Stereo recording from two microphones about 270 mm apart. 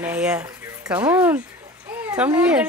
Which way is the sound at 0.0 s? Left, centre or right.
Centre.